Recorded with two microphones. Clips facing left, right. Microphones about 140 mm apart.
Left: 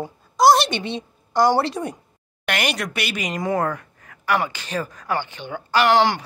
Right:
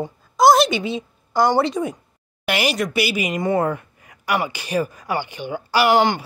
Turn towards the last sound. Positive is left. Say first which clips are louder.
# right 1 dB
turn(degrees=0)  # may be behind; listen again after turning